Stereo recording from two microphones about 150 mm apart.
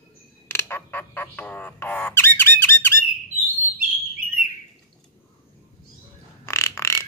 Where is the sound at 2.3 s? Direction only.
15° left (ahead or behind).